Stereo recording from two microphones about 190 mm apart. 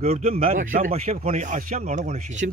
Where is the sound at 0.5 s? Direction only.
45° right (ahead or behind).